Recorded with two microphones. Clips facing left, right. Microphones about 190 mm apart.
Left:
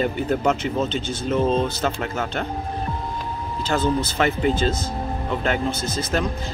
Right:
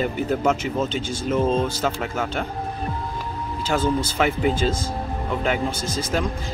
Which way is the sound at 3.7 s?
10° right (ahead or behind).